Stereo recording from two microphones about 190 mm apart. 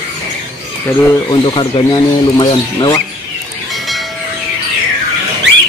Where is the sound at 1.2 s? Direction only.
25° left (ahead or behind).